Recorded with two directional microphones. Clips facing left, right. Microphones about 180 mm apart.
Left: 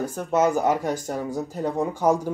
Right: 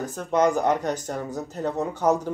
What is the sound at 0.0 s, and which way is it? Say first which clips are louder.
Speech: even; 10° left (ahead or behind).